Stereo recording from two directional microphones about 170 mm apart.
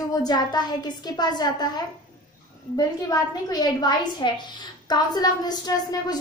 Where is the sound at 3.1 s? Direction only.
25° left (ahead or behind).